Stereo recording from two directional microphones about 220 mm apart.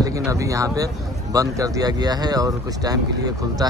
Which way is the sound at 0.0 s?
15° right (ahead or behind).